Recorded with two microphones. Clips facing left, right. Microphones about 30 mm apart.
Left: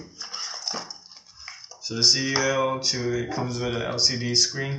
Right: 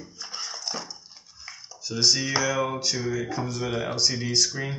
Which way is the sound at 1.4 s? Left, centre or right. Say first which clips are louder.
Left 1 dB; centre.